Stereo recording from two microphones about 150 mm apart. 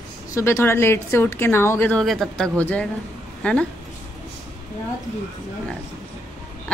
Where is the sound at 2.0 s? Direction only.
Centre (ahead or behind).